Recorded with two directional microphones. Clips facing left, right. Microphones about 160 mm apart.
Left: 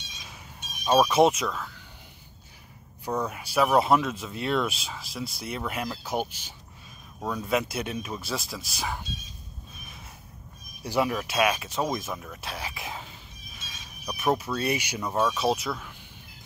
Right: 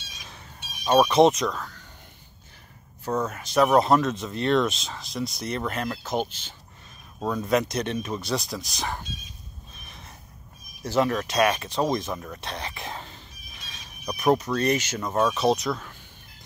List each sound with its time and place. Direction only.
0.8 s speech: 10° left (ahead or behind)
3.1 s speech: 10° left (ahead or behind)
7.2 s speech: 5° right (ahead or behind)
7.4 s speech: 5° left (ahead or behind)
10.8 s speech: 10° left (ahead or behind)